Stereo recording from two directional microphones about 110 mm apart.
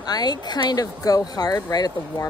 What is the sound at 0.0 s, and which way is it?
Speech, 40° left (ahead or behind).